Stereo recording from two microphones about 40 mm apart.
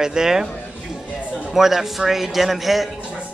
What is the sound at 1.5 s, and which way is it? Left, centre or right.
Speech, centre.